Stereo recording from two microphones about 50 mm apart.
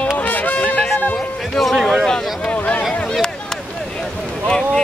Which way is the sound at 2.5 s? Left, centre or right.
Left.